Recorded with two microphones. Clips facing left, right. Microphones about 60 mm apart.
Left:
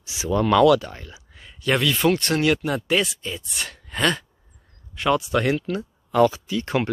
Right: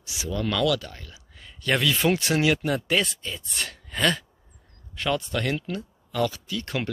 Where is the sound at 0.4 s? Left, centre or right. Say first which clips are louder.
Left 9 dB; left.